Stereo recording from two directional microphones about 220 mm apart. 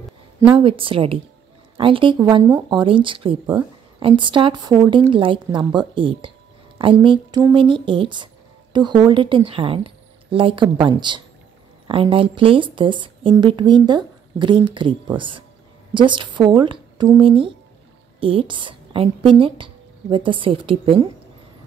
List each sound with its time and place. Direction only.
0.6 s a woman's voice: 25° right (ahead or behind)